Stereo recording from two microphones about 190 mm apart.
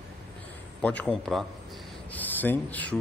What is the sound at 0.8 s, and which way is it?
A man's voice, 5° left (ahead or behind).